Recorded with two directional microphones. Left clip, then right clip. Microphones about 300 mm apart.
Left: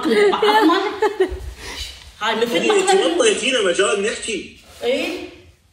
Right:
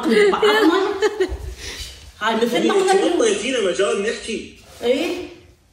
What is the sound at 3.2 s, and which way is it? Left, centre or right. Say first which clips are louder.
Speech: left 2 dB; left.